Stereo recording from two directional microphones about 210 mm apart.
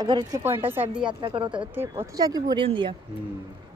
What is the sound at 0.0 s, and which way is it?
Speech, 20° right (ahead or behind).